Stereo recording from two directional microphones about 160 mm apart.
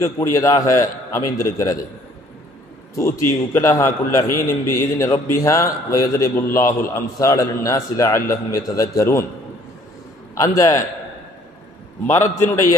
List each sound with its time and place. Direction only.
0.0 s a man's voice: 20° left (ahead or behind)
3.0 s a man's voice: 15° left (ahead or behind)
10.3 s a man's voice: 20° left (ahead or behind)
12.1 s a man's voice: 15° left (ahead or behind)